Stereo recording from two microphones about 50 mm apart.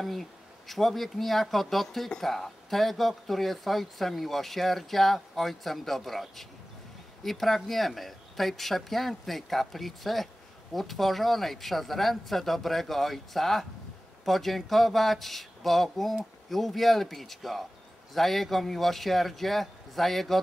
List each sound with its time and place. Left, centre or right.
0.0 s speech: centre